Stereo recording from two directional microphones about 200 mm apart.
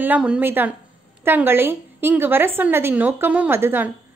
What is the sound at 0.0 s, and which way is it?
A woman's voice, 5° right (ahead or behind).